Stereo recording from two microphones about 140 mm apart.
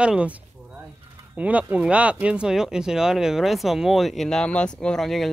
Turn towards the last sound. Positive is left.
turn(degrees=0)  # may be behind; listen again after turning